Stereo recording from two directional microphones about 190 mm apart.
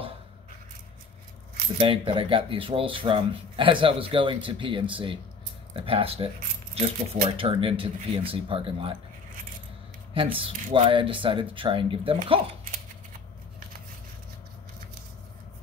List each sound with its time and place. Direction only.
1.8 s speech: 30° right (ahead or behind)
7.2 s speech: 30° right (ahead or behind)
10.1 s speech: 25° right (ahead or behind)